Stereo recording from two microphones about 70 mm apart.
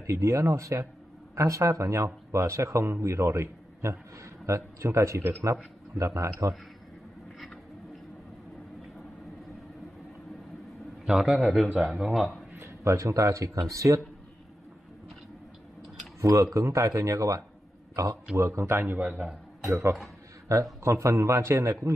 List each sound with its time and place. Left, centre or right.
0.0 s speech: right
11.1 s a man's voice: centre
12.5 s speech: right
16.2 s a man's voice: right
19.7 s speech: right